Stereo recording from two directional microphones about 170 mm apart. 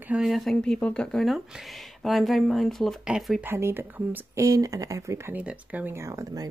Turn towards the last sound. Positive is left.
turn(degrees=-20)  # may be behind; listen again after turning